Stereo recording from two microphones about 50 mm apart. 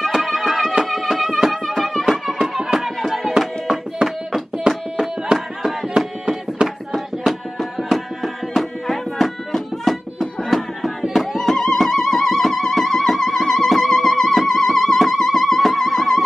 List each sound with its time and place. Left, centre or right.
0.1 s music: centre
7.9 s music: centre